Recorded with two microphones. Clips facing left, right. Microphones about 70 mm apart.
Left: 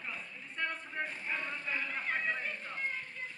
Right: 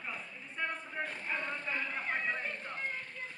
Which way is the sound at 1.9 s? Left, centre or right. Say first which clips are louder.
Even; centre.